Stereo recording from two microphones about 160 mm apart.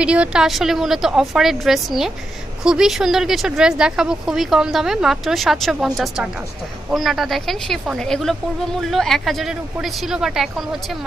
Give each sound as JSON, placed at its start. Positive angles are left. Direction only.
{"t": 0.0, "sound": "speech", "side_deg": -5}